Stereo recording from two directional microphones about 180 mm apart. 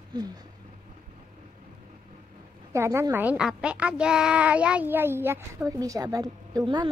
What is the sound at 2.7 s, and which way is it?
A child's voice, 15° right (ahead or behind).